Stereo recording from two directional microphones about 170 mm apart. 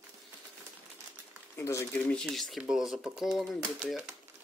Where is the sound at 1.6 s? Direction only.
15° left (ahead or behind); by 4.2 s 5° right (ahead or behind).